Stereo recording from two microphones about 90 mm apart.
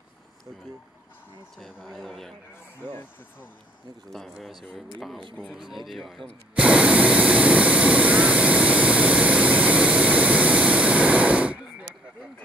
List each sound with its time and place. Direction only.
1.6 s speech: centre (ahead or behind)
2.8 s speech: 20° left (ahead or behind)
4.1 s speech: centre (ahead or behind)
6.5 s vehicle: 15° right (ahead or behind)